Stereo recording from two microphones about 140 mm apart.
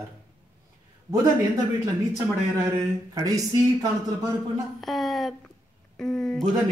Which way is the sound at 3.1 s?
25° right (ahead or behind).